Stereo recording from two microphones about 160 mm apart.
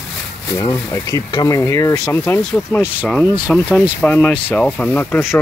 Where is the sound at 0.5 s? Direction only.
20° left (ahead or behind).